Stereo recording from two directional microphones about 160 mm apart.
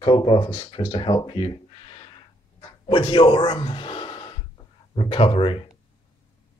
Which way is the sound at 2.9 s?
30° left (ahead or behind).